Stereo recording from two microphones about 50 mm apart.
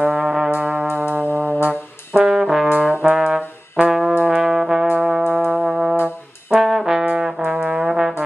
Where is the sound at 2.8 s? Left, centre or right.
Right.